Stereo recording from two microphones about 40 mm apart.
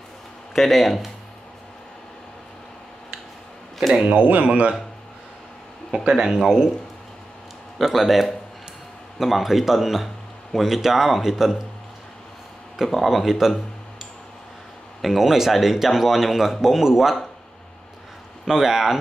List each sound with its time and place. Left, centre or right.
0.6 s speech: centre
4.1 s speech: right
6.0 s speech: right
6.3 s speech: centre
7.8 s speech: centre
12.7 s speech: centre
15.0 s speech: centre
18.5 s speech: centre